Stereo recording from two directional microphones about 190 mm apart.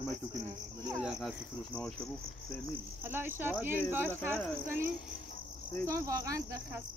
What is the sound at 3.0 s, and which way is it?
Speech, 10° right (ahead or behind).